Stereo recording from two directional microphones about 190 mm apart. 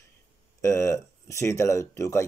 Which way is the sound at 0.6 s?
15° left (ahead or behind).